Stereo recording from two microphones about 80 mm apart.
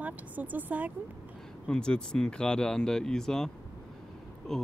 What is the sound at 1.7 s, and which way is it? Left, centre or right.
Speech, centre.